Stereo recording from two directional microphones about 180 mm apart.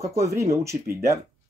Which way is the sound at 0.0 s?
15° right (ahead or behind).